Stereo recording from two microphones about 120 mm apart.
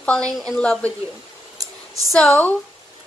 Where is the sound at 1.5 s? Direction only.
30° right (ahead or behind).